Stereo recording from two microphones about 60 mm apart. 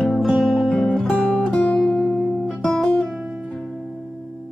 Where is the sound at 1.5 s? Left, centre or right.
Left.